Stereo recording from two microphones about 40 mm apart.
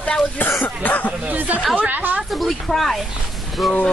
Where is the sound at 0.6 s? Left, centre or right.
Left.